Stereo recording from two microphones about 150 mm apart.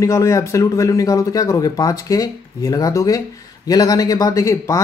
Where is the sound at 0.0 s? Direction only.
20° left (ahead or behind).